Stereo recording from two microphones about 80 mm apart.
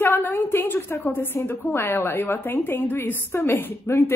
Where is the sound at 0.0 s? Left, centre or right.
Left.